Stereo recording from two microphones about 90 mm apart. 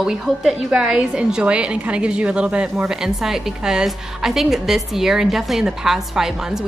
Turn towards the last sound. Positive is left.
turn(degrees=-5)  # may be behind; listen again after turning